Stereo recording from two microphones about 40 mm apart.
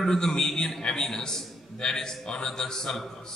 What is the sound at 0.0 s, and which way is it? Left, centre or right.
A man's voice, centre.